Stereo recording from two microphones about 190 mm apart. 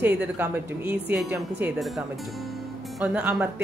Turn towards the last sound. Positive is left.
turn(degrees=-5)  # may be behind; listen again after turning